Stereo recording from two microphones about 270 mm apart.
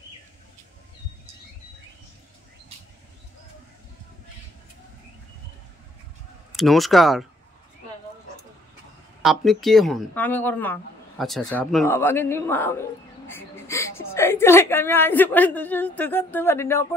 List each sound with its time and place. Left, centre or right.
6.5 s speech: centre
9.2 s a woman's voice: centre